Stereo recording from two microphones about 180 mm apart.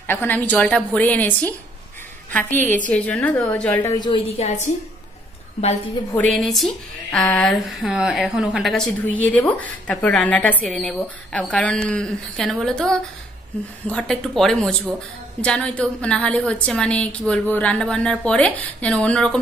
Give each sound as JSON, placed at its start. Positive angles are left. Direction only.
{"t": 0.0, "sound": "a woman's voice", "side_deg": 10}
{"t": 3.9, "sound": "a woman's voice", "side_deg": 25}
{"t": 4.4, "sound": "a woman's voice", "side_deg": 40}
{"t": 6.1, "sound": "a woman's voice", "side_deg": 0}